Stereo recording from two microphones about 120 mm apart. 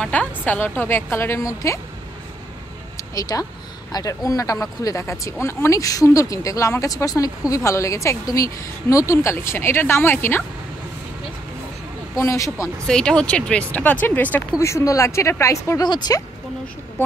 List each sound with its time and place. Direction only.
0.0 s speech: 10° left (ahead or behind)
3.0 s a sound: 30° left (ahead or behind)
3.9 s speech: 30° left (ahead or behind)
12.2 s speech: 25° left (ahead or behind)
12.8 s speech: 5° left (ahead or behind); by 16.2 s 25° left (ahead or behind)